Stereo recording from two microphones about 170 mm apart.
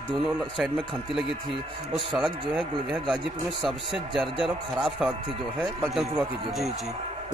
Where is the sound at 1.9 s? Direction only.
5° right (ahead or behind).